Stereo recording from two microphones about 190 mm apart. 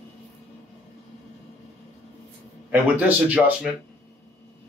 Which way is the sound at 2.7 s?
10° right (ahead or behind).